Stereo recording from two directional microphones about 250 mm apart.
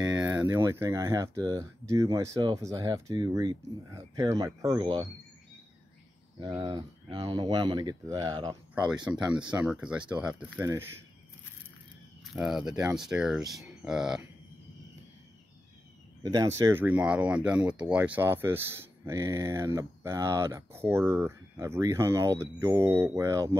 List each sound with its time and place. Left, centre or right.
0.0 s speech: centre
6.4 s speech: centre
9.3 s speech: centre
12.4 s speech: centre
16.2 s speech: centre